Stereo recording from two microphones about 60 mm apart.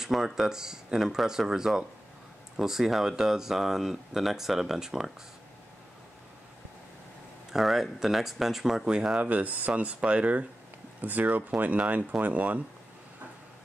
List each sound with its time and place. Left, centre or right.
0.0 s speech: centre
7.5 s speech: centre
9.2 s speech: right